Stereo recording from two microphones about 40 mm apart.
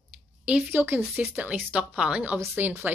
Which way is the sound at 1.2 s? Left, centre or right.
Right.